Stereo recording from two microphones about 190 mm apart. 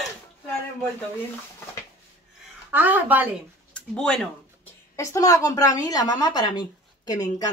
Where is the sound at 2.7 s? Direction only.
10° right (ahead or behind).